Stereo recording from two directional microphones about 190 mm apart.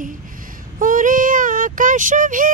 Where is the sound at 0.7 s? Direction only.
45° right (ahead or behind).